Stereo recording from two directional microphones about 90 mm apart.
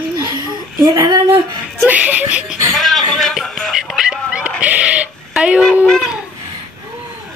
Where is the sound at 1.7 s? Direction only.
20° right (ahead or behind).